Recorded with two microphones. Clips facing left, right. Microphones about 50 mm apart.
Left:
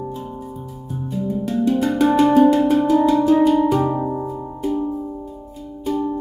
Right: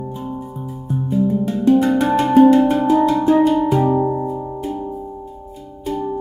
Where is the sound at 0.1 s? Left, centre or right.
Centre.